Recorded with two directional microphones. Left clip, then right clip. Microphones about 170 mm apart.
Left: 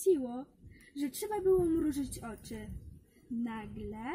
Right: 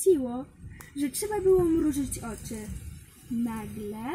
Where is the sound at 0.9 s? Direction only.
15° left (ahead or behind).